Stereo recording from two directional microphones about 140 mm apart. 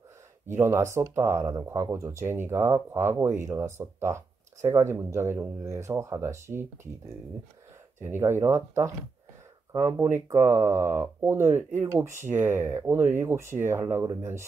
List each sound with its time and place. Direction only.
0.5 s speech: 20° right (ahead or behind)
8.0 s speech: 15° right (ahead or behind)